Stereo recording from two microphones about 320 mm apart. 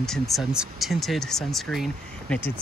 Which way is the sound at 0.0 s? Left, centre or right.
Centre.